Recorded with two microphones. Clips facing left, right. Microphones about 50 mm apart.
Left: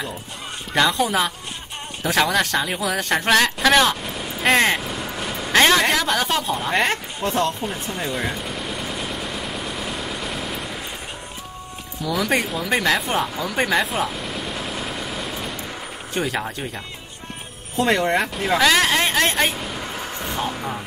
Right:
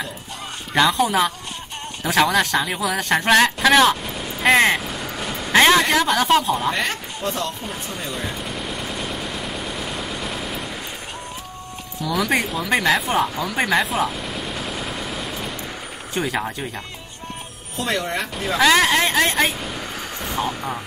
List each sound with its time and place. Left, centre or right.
0.7 s speech: centre
3.9 s vehicle: centre
6.4 s speech: centre
6.7 s speech: left
8.2 s vehicle: centre
12.0 s speech: centre
17.8 s speech: left
18.3 s speech: centre